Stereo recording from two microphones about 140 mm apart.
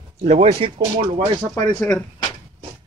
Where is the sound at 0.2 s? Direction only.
45° right (ahead or behind).